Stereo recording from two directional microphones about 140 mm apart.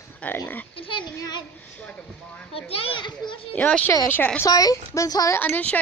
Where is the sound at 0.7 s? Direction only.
40° left (ahead or behind).